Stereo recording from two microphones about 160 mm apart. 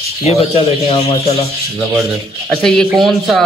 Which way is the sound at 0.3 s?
40° left (ahead or behind).